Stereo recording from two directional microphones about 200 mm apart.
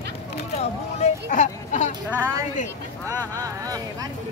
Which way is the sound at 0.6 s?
35° left (ahead or behind).